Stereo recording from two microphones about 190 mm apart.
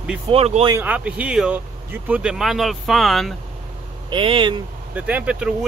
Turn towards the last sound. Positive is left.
turn(degrees=-5)  # may be behind; listen again after turning